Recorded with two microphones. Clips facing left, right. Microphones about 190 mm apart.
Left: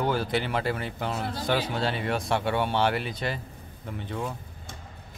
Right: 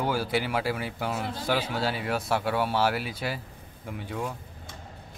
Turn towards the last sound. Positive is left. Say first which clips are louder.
# even
turn(degrees=-10)  # may be behind; listen again after turning